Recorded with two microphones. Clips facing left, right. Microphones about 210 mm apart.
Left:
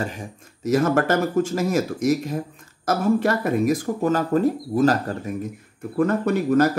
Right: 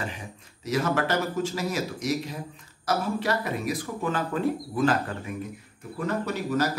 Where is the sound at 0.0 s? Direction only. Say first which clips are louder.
Left 6 dB; 45° left (ahead or behind).